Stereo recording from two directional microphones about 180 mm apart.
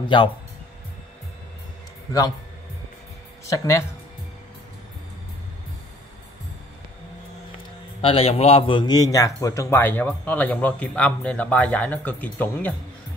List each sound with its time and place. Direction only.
0.0 s speech: 30° left (ahead or behind)
3.4 s a man's voice: 15° left (ahead or behind)
8.0 s a man's voice: 30° left (ahead or behind); by 12.7 s 10° left (ahead or behind)